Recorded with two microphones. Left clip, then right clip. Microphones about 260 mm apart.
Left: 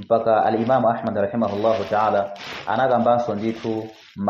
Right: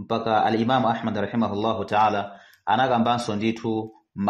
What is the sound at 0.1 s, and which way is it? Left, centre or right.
Speech, right.